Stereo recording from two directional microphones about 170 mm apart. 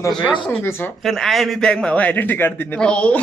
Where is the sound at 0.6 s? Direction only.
15° left (ahead or behind).